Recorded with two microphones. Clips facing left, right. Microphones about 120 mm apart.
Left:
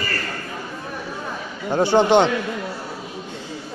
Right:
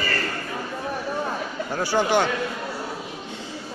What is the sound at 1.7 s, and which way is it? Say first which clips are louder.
Speech: left 7 dB; 25° left (ahead or behind).